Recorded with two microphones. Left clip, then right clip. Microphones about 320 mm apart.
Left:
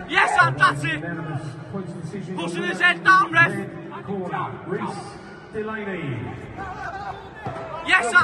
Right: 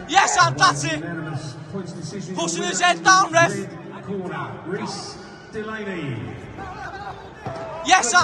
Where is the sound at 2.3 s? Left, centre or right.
Centre.